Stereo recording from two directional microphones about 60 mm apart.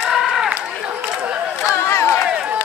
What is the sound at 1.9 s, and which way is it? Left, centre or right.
Run, left.